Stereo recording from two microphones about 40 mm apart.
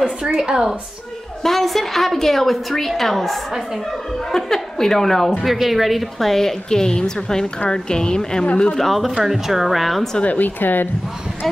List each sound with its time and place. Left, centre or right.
0.2 s speech: centre
1.4 s a woman's voice: centre
5.4 s a woman's voice: centre
8.7 s a woman's voice: centre
9.2 s a woman's voice: centre
10.2 s speech: left